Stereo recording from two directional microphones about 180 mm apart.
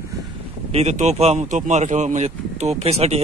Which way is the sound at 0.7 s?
40° right (ahead or behind).